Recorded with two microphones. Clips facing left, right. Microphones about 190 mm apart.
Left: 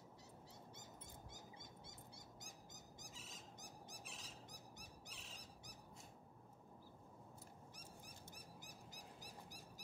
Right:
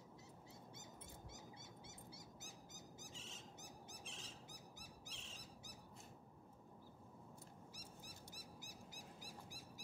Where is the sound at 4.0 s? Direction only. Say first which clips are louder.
Right 1 dB; 30° right (ahead or behind).